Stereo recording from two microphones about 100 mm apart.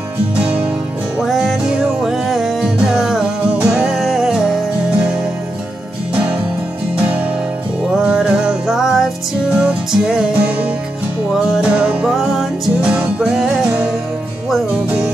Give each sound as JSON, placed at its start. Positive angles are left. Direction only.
{"t": 1.2, "sound": "music", "side_deg": -5}
{"t": 7.9, "sound": "music", "side_deg": -10}
{"t": 12.2, "sound": "music", "side_deg": 0}